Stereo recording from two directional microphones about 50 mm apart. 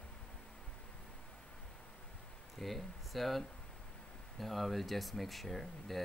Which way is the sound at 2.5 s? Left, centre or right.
Centre.